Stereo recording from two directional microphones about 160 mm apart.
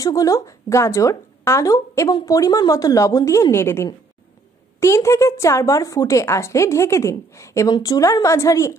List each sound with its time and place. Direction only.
0.0 s speech: 20° left (ahead or behind)